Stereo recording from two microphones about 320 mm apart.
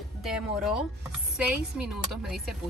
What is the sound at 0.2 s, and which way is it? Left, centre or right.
Speech, centre.